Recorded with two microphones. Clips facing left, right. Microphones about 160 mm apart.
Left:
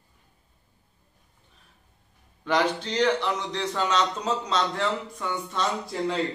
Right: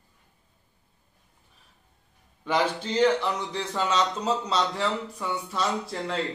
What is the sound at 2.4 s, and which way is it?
A man's voice, 10° right (ahead or behind).